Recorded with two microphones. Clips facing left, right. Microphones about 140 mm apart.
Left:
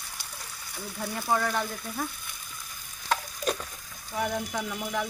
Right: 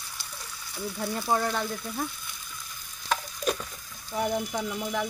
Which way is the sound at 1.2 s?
10° right (ahead or behind).